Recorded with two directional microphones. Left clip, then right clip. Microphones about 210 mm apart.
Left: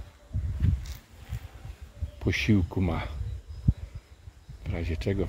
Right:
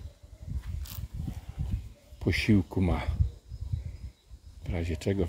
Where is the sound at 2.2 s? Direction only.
5° right (ahead or behind).